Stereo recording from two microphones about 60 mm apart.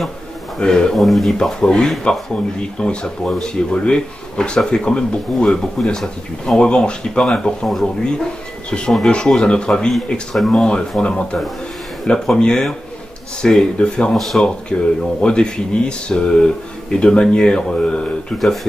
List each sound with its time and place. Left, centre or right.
0.6 s speech: centre
0.9 s speech: centre
2.1 s speech: centre
12.4 s speech: centre
14.1 s speech: centre
14.4 s speech: centre
18.4 s speech: centre